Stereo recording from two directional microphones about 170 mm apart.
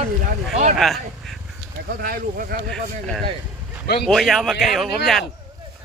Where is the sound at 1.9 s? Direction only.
60° right (ahead or behind).